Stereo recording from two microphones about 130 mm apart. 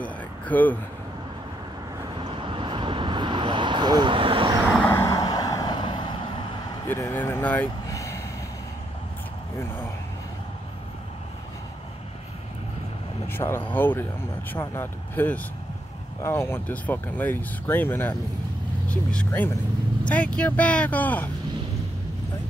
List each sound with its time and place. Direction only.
0.0 s a sound: 15° left (ahead or behind)
2.1 s vehicle: 40° right (ahead or behind)
4.9 s vehicle: 30° left (ahead or behind)
6.9 s speech: 15° left (ahead or behind)
7.8 s vehicle: 25° left (ahead or behind)
13.3 s speech: 20° left (ahead or behind)